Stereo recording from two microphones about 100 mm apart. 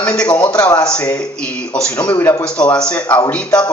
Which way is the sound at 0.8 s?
15° left (ahead or behind).